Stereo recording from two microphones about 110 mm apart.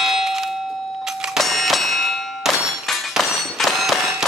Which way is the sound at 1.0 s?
5° right (ahead or behind).